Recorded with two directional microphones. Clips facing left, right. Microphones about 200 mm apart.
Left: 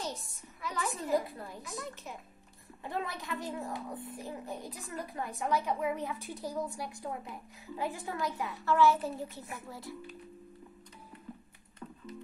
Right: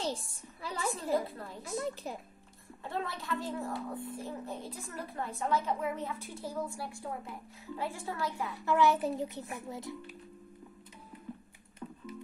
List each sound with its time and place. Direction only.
0.0 s a woman's voice: 30° right (ahead or behind)
1.1 s a child's voice: 15° left (ahead or behind)
1.7 s a woman's voice: 35° right (ahead or behind)
2.8 s a child's voice: 15° left (ahead or behind)
8.6 s a child's voice: 15° right (ahead or behind)